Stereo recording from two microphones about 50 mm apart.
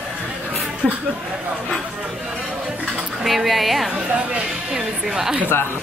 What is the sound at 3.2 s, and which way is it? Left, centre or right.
Speech, centre.